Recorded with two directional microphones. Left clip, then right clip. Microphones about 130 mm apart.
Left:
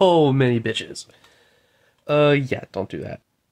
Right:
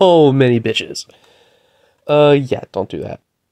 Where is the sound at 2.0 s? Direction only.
35° right (ahead or behind).